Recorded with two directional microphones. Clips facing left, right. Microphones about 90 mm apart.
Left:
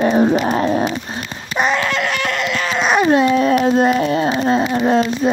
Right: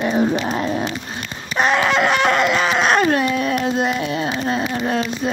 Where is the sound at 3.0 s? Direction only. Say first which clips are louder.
Left 5 dB; 25° left (ahead or behind).